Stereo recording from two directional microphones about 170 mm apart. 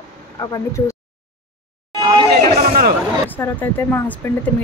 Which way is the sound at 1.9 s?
25° right (ahead or behind).